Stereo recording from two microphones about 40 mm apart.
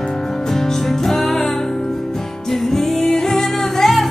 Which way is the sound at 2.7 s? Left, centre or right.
Centre.